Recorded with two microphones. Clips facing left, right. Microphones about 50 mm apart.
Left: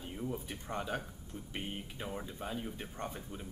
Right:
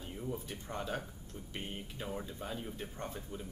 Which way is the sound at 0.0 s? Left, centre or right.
Centre.